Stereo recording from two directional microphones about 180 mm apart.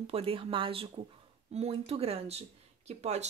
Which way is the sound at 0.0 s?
30° right (ahead or behind).